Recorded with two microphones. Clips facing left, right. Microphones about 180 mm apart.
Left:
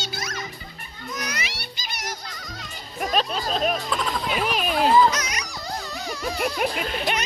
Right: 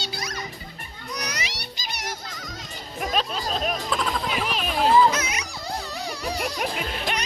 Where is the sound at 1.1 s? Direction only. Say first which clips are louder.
Even; 35° right (ahead or behind).